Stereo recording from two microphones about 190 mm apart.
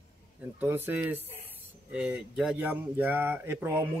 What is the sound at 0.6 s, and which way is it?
Speech, 10° right (ahead or behind).